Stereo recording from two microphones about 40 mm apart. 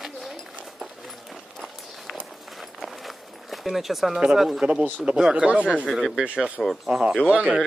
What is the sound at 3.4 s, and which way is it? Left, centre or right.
Speech, centre.